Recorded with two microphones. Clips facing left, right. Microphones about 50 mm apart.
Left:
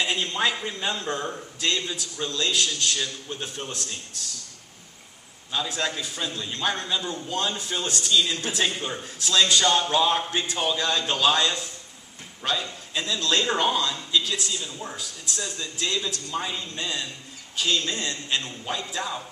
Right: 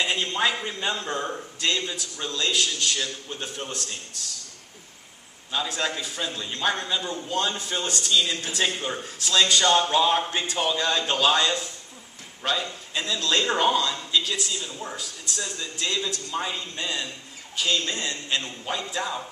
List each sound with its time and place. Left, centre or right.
0.0 s a man's voice: centre
5.5 s a man's voice: centre